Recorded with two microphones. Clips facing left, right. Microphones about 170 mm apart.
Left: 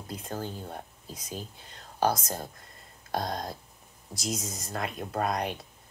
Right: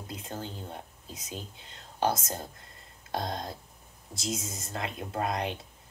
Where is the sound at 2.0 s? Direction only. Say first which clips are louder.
Left 2 dB; 25° right (ahead or behind).